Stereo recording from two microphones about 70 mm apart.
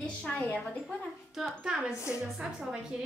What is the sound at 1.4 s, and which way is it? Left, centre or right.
Speech, centre.